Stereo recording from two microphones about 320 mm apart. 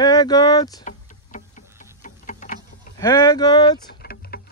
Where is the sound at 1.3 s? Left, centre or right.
Left.